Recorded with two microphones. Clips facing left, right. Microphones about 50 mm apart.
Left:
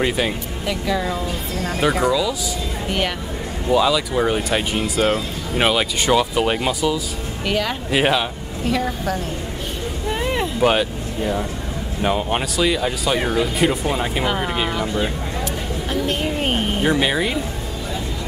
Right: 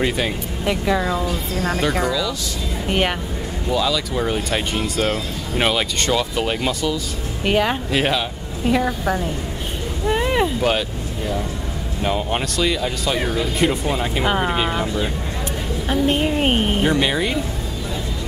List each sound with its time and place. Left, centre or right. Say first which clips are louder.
0.0 s speech: left 1 dB; centre
0.7 s speech: right 2 dB; centre
2.0 s speech: left 3 dB; centre
3.7 s speech: left 4 dB; centre
7.4 s speech: right 4 dB; right
7.9 s speech: left 6 dB; centre
8.6 s speech: right 3 dB; centre
10.0 s a sound: right 4 dB; centre
10.6 s speech: left 3 dB; centre
14.2 s speech: right 2 dB; centre
15.9 s a sound: right 4 dB; centre
16.8 s speech: even; centre